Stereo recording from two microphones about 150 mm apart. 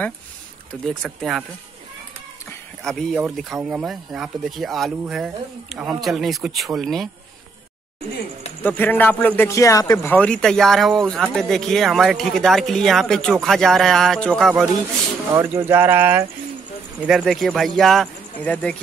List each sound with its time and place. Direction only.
0.8 s speech: centre (ahead or behind)
2.8 s speech: 5° left (ahead or behind)
8.6 s speech: 10° left (ahead or behind)
10.1 s speech: 5° left (ahead or behind)
15.3 s speech: 15° right (ahead or behind)
17.0 s speech: 5° right (ahead or behind)